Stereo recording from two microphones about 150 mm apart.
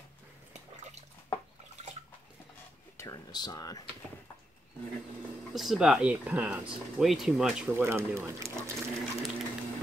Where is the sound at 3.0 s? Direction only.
25° left (ahead or behind).